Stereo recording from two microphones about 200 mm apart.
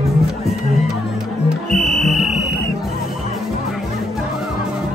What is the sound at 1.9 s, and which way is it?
Music, centre (ahead or behind).